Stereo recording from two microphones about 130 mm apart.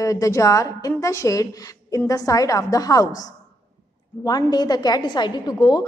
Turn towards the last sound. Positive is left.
turn(degrees=30)  # may be behind; listen again after turning